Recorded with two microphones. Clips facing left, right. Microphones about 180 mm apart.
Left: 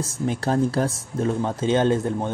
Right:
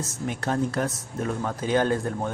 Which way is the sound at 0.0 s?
30° left (ahead or behind).